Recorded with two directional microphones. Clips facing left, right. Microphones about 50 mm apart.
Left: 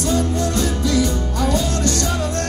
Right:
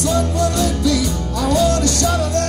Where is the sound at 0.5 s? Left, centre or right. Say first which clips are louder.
Right 1 dB; left.